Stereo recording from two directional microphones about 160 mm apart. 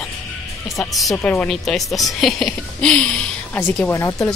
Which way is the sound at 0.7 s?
Centre (ahead or behind).